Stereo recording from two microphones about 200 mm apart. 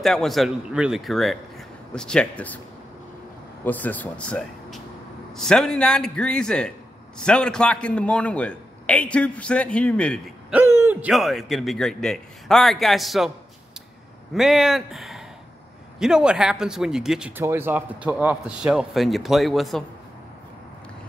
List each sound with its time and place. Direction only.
0.0 s speech: centre (ahead or behind)
3.6 s speech: 10° left (ahead or behind)
10.5 s speech: 10° right (ahead or behind)
14.3 s speech: centre (ahead or behind)